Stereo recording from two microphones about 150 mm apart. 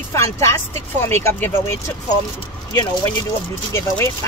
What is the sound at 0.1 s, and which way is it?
Speech, 20° left (ahead or behind).